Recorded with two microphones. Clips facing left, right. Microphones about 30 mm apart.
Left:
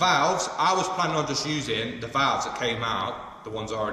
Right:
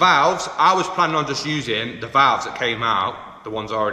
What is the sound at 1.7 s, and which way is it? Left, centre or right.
A man's voice, right.